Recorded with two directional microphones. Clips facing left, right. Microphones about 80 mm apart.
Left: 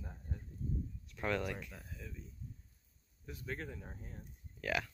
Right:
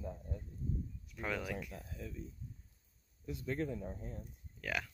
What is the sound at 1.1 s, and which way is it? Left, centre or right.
Speech, centre.